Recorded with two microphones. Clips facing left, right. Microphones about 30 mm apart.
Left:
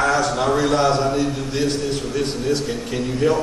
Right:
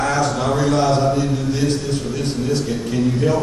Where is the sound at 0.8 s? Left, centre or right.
Centre.